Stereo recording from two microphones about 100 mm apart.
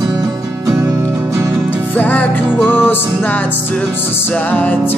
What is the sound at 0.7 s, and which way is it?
Music, 35° right (ahead or behind).